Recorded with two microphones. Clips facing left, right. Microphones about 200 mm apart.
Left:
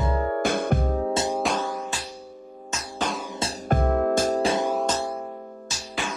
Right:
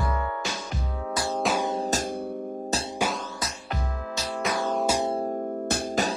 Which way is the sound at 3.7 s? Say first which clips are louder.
Left 15 dB; 55° left (ahead or behind).